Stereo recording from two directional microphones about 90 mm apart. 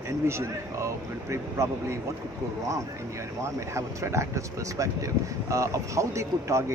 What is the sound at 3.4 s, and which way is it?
Speech, 30° right (ahead or behind).